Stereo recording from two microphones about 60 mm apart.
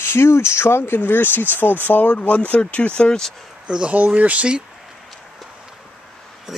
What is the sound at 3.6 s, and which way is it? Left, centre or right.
Speech, centre.